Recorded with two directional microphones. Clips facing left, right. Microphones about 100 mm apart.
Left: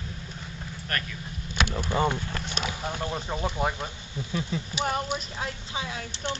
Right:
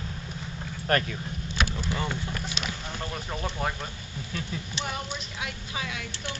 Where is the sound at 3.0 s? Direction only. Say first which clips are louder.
Left 2 dB; 15° left (ahead or behind).